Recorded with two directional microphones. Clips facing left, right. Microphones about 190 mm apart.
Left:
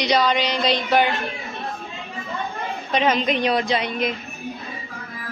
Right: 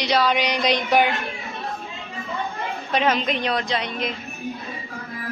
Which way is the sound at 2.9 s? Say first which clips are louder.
Left 2 dB; centre (ahead or behind).